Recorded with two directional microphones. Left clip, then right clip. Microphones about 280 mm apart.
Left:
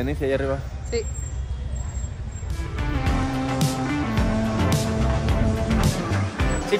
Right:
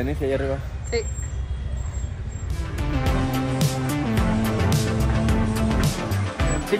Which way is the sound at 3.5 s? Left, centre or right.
Centre.